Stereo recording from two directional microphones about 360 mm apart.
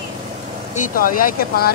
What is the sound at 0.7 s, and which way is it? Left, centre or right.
Speech, left.